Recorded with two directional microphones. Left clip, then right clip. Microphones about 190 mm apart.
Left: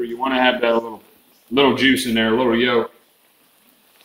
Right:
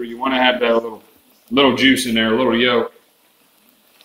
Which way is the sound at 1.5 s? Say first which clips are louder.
Right 2 dB; 45° left (ahead or behind).